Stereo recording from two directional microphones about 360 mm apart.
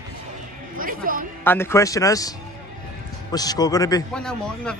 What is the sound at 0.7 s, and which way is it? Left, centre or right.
Speech, right.